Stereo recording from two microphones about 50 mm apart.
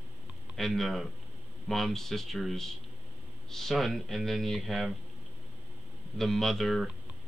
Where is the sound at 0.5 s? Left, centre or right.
Centre.